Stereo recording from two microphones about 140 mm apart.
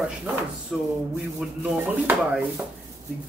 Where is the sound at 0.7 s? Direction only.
5° right (ahead or behind).